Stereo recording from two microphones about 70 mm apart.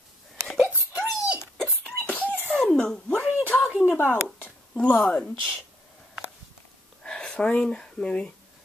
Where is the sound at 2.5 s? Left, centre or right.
Centre.